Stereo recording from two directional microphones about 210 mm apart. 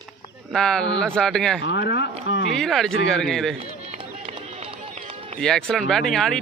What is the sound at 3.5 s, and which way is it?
Run, 30° right (ahead or behind).